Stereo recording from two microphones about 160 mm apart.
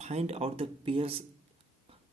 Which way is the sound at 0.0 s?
40° right (ahead or behind).